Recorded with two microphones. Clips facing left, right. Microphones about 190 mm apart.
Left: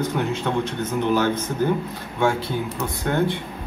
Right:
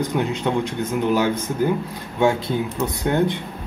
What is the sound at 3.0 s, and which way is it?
Speech, 20° right (ahead or behind).